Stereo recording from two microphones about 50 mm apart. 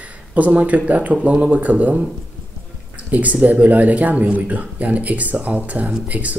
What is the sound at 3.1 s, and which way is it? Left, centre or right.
Speech, right.